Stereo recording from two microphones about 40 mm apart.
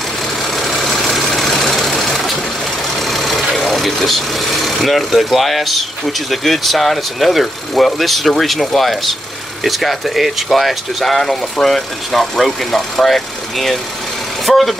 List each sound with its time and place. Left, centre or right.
0.6 s vehicle: centre
3.0 s speech: centre